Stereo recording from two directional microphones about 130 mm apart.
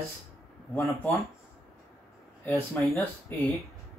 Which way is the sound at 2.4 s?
15° left (ahead or behind).